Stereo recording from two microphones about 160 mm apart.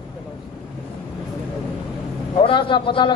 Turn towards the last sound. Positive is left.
turn(degrees=30)  # may be behind; listen again after turning